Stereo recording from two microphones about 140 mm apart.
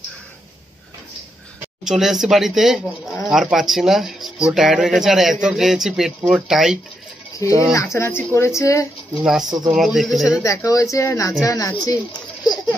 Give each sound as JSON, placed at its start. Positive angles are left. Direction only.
{"t": 1.9, "sound": "speech", "side_deg": -5}
{"t": 7.3, "sound": "speech", "side_deg": 20}
{"t": 9.2, "sound": "speech", "side_deg": -5}
{"t": 10.4, "sound": "speech", "side_deg": 20}